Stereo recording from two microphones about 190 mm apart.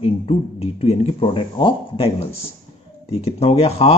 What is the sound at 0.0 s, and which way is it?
Speech, 30° left (ahead or behind).